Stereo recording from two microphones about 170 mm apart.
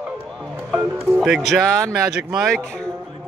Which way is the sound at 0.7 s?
Centre (ahead or behind).